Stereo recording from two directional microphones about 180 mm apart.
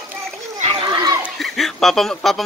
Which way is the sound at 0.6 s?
30° right (ahead or behind).